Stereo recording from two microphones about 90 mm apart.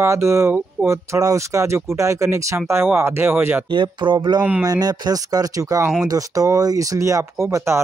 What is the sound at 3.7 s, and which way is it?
Speech, 60° right (ahead or behind).